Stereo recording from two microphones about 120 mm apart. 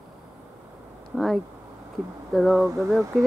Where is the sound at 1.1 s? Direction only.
Centre (ahead or behind).